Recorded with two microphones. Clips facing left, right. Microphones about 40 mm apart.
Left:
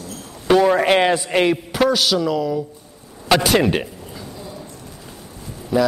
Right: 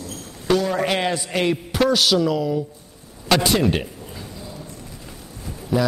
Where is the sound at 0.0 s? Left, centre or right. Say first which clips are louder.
Left 1 dB; left.